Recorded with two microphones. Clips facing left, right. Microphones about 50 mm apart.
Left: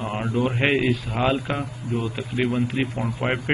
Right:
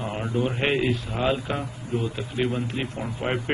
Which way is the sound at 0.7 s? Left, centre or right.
Centre.